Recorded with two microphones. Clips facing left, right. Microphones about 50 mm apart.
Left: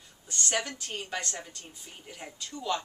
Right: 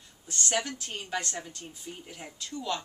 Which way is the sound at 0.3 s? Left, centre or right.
Centre.